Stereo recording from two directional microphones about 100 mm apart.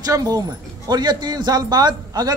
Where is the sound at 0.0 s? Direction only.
35° right (ahead or behind).